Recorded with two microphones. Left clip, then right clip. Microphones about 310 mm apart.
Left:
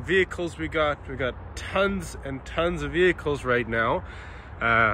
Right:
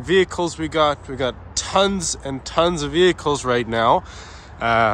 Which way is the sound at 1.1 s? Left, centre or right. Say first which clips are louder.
Right 6 dB; right.